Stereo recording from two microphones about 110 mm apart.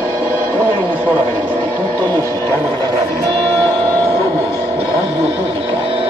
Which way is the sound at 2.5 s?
25° left (ahead or behind).